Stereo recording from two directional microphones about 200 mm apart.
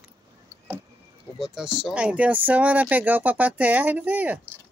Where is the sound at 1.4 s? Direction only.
5° right (ahead or behind).